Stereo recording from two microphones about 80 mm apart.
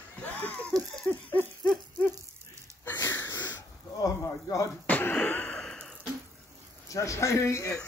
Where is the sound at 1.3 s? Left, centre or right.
Left.